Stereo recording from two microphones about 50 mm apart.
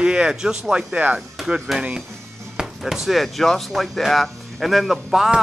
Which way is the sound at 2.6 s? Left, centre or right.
Centre.